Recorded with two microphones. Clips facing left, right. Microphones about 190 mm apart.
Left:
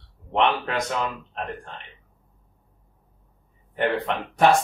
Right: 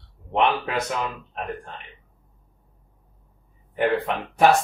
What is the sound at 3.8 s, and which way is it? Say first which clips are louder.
Speech: right 2 dB; 5° right (ahead or behind).